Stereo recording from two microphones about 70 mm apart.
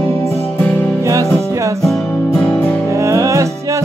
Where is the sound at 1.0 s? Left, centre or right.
Right.